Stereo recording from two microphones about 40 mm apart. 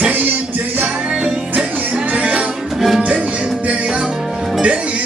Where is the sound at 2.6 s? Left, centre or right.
Centre.